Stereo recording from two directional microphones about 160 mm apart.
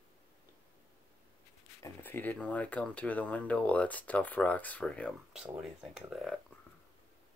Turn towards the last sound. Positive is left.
turn(degrees=0)  # may be behind; listen again after turning